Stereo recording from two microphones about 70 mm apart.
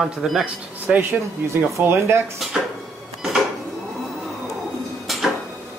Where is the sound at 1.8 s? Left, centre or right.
Right.